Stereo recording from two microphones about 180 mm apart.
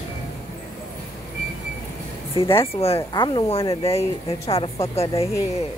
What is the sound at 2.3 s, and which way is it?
Speech, 30° left (ahead or behind).